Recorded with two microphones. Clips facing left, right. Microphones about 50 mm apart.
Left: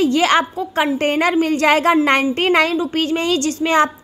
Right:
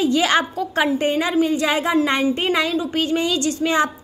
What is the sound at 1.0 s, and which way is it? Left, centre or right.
A woman's voice, left.